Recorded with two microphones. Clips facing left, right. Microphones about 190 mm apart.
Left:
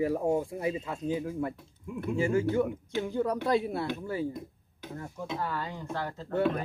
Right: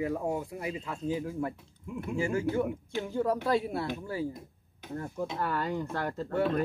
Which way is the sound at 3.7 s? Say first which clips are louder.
Left 1 dB; 25° left (ahead or behind).